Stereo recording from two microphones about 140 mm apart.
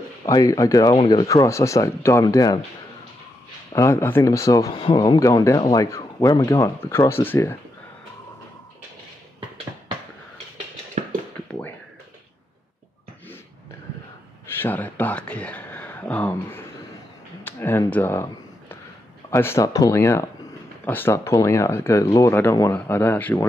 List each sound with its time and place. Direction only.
0.3 s speech: 25° left (ahead or behind)
1.3 s speech: 20° left (ahead or behind)
3.7 s speech: 20° left (ahead or behind)
4.7 s speech: 35° left (ahead or behind); by 7.5 s 15° left (ahead or behind)
11.0 s a sound: 55° right (ahead or behind)
14.6 s speech: 15° left (ahead or behind)
17.4 s a sound: 15° left (ahead or behind)
19.3 s speech: 20° left (ahead or behind)